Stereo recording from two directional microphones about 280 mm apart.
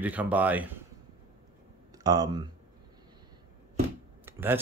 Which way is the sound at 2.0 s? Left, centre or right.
Centre.